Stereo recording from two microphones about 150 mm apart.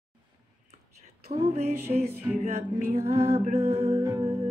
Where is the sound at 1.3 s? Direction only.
45° right (ahead or behind).